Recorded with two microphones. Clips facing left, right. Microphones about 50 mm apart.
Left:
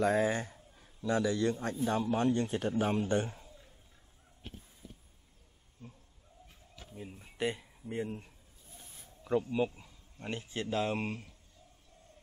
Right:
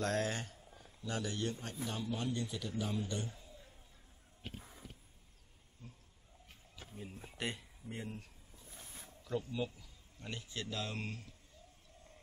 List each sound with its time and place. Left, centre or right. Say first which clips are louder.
0.0 s speech: left 7 dB; centre
1.0 s a man's voice: left 9 dB; left
4.6 s a sound: right 4 dB; right
6.9 s speech: left 2 dB; centre
9.2 s a man's voice: left 8 dB; left